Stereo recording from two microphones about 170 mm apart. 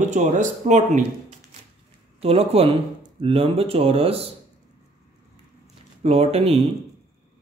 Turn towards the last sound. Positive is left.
turn(degrees=-35)  # may be behind; listen again after turning